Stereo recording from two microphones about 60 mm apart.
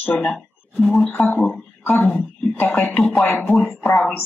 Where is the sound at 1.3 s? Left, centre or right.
Left.